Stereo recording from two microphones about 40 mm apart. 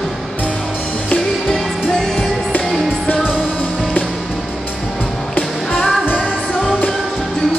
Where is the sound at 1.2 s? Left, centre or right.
Centre.